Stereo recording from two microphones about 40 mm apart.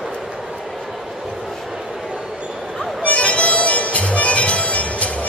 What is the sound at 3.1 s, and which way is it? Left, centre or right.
Music, left.